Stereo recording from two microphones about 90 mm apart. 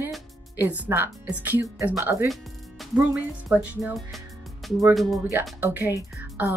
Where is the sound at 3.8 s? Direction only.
5° right (ahead or behind).